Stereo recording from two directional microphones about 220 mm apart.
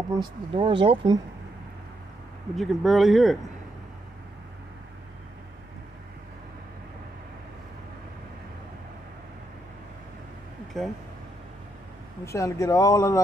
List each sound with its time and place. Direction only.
0.1 s speech: 20° right (ahead or behind)
2.5 s speech: centre (ahead or behind)
10.8 s speech: centre (ahead or behind)
12.3 s speech: 15° left (ahead or behind)